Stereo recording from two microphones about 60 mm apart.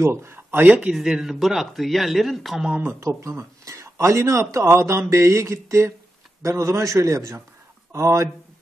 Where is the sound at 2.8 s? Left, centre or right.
Right.